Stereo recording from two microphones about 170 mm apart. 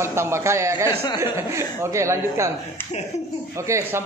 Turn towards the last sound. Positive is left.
turn(degrees=-15)  # may be behind; listen again after turning